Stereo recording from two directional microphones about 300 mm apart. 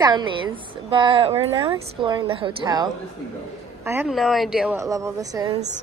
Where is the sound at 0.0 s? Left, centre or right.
Centre.